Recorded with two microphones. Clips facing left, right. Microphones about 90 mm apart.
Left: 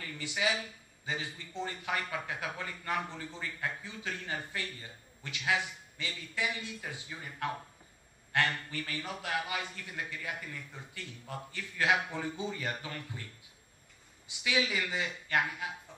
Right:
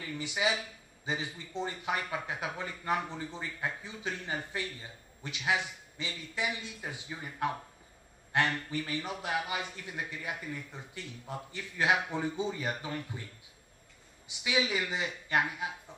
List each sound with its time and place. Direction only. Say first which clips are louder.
0.0 s a man's voice: right 2 dB; 20° right (ahead or behind)
14.4 s speech: right 1 dB; 20° right (ahead or behind)